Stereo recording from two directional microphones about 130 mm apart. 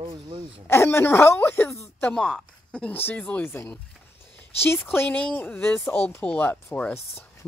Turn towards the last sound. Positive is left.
turn(degrees=15)  # may be behind; listen again after turning